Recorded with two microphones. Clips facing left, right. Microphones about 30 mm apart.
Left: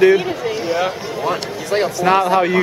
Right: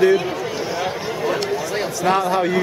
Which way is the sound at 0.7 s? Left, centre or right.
Centre.